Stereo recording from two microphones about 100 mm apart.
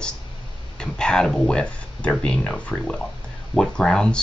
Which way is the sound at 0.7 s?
10° left (ahead or behind).